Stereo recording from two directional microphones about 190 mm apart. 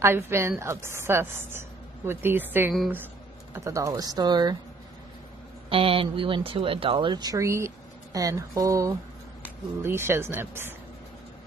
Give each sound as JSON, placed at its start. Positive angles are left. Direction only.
{"t": 0.0, "sound": "a woman's voice", "side_deg": -15}
{"t": 2.7, "sound": "speech", "side_deg": 0}
{"t": 3.5, "sound": "speech", "side_deg": -15}
{"t": 5.7, "sound": "a woman's voice", "side_deg": -30}